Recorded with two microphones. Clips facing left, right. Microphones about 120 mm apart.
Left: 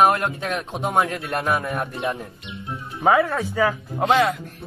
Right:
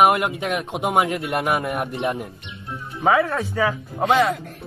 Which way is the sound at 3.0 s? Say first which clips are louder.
Even; centre (ahead or behind).